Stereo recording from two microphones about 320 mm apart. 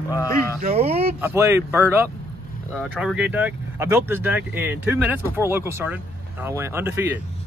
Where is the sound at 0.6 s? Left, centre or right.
Centre.